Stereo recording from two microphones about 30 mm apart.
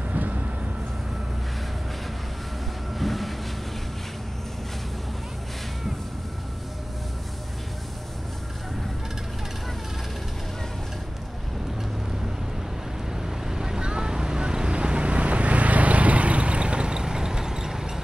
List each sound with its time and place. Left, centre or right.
0.1 s vehicle: right
3.0 s vehicle: centre
13.1 s vehicle: centre